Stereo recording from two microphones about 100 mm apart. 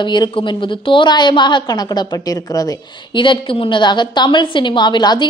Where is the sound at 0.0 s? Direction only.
50° left (ahead or behind).